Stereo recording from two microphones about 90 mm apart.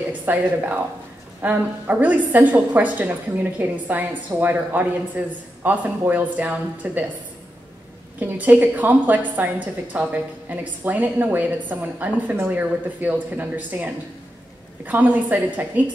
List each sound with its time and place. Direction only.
0.2 s a woman's voice: 20° right (ahead or behind)
8.2 s a woman's voice: 20° right (ahead or behind)